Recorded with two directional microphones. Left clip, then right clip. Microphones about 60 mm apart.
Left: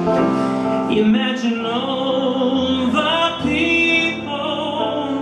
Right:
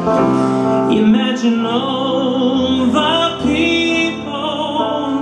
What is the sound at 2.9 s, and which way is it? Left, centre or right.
Music, right.